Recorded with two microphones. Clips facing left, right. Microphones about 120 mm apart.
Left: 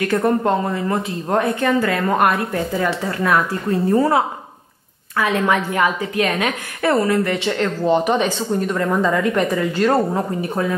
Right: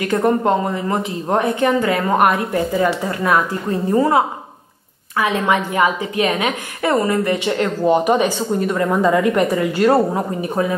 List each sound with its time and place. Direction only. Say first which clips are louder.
0.1 s a woman's voice: right 3 dB; 15° right (ahead or behind)
5.2 s a woman's voice: even; 15° right (ahead or behind)